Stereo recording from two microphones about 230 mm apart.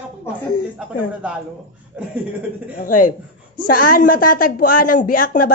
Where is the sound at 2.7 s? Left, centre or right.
Left.